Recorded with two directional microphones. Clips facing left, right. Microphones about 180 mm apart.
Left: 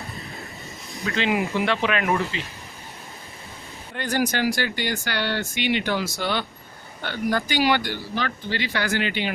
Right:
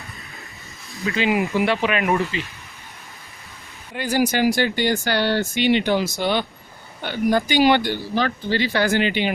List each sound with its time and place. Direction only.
1.0 s speech: 5° right (ahead or behind)
1.5 s speech: 15° right (ahead or behind)
1.8 s speech: centre (ahead or behind)
3.9 s speech: 10° right (ahead or behind)